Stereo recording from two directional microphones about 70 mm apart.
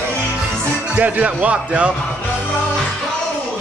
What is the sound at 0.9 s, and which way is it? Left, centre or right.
Speech, right.